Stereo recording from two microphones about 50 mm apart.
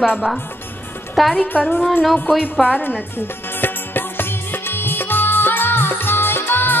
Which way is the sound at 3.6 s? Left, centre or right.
Left.